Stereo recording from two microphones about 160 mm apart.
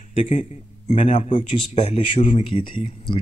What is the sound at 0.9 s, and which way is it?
Speech, 45° left (ahead or behind).